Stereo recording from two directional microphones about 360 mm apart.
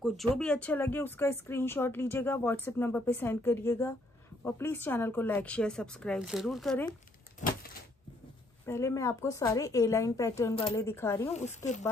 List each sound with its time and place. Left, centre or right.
0.4 s a woman's voice: centre
7.4 s a sound: centre
8.6 s a woman's voice: centre
11.3 s speech: centre